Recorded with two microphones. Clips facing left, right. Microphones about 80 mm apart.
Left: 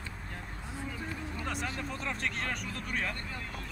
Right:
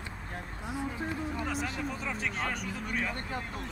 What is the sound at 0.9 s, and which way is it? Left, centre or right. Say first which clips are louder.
Speech: right 5 dB; centre.